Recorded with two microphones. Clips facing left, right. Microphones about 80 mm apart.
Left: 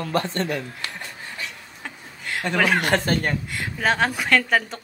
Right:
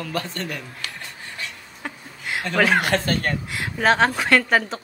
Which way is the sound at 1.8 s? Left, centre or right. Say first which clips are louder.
Right 2 dB; centre.